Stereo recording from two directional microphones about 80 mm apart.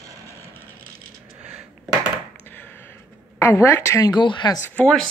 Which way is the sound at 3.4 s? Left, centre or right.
Left.